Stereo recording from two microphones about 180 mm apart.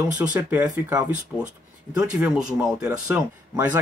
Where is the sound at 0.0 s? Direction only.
10° right (ahead or behind).